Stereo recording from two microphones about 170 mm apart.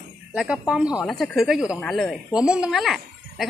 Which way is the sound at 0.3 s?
5° right (ahead or behind).